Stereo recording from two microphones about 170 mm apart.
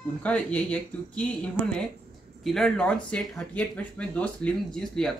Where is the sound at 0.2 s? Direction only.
10° left (ahead or behind).